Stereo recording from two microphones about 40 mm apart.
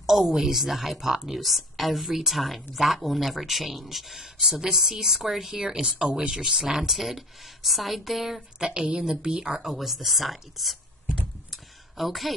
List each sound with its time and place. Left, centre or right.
0.0 s a woman's voice: centre; by 6.3 s right
6.3 s speech: centre
8.5 s a woman's voice: right; by 10.8 s centre
11.5 s a sound: centre